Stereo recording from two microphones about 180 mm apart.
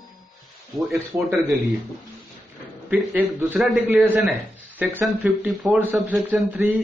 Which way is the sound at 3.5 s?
Centre (ahead or behind).